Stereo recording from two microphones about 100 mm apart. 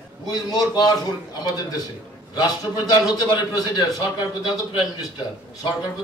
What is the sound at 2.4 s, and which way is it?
A man's voice, 40° left (ahead or behind).